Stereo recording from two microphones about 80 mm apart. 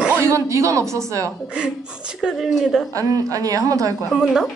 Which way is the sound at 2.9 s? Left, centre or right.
Right.